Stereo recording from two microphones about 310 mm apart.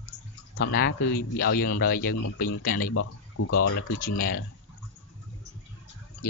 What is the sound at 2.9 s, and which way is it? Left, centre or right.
Speech, left.